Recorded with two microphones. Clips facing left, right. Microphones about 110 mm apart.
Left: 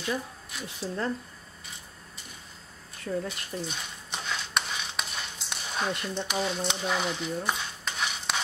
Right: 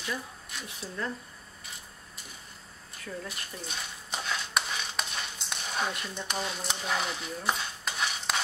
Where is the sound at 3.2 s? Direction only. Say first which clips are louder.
Left 6 dB; 5° right (ahead or behind).